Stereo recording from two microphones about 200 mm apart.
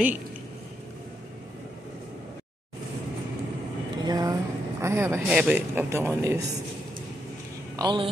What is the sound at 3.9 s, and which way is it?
Vehicle, 20° right (ahead or behind).